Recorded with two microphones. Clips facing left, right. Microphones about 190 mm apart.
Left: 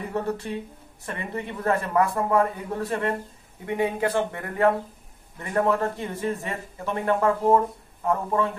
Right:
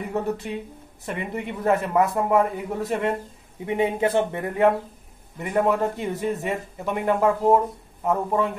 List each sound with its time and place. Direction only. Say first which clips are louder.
0.1 s speech: right 1 dB; 15° right (ahead or behind)